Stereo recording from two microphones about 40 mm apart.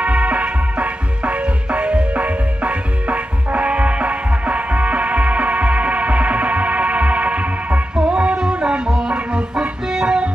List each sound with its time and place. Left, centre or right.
0.0 s music: right
7.9 s music: right